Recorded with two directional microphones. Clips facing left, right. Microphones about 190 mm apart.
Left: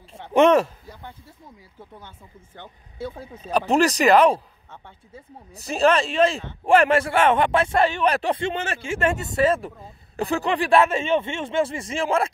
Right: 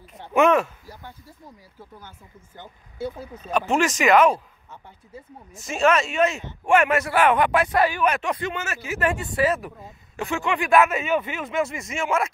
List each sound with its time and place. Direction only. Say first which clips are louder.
0.1 s speech: left 3 dB; 30° left (ahead or behind)
3.3 s speech: left 3 dB; 30° left (ahead or behind)